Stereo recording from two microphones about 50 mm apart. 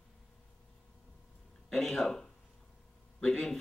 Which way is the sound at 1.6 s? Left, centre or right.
Centre.